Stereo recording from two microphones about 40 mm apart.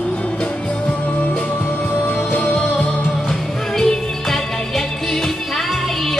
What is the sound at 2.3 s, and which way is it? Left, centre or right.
Music, left.